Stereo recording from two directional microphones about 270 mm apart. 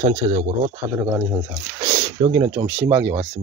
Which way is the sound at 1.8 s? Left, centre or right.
Centre.